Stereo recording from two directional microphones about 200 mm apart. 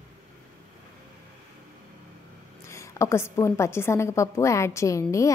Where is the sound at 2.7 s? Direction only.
15° left (ahead or behind).